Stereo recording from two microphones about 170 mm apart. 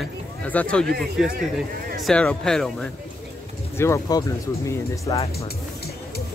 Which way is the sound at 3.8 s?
20° left (ahead or behind).